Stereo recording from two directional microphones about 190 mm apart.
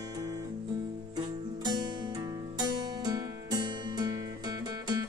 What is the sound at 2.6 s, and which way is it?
Music, 20° right (ahead or behind).